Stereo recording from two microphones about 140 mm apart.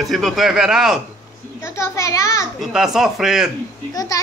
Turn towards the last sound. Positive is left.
turn(degrees=25)  # may be behind; listen again after turning